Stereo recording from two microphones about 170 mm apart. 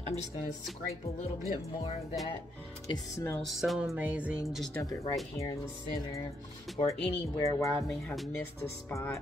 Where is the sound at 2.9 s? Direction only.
15° left (ahead or behind).